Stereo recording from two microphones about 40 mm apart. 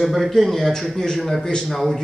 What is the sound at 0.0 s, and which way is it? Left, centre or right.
A man's voice, centre.